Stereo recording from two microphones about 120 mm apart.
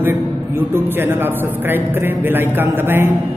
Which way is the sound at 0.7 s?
20° right (ahead or behind).